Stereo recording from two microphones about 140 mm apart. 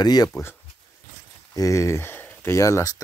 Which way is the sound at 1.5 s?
25° left (ahead or behind).